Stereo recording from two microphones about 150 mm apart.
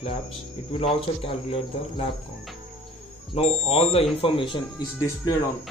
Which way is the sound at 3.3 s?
45° left (ahead or behind).